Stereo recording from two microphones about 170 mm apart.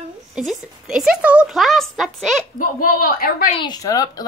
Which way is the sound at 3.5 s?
25° left (ahead or behind).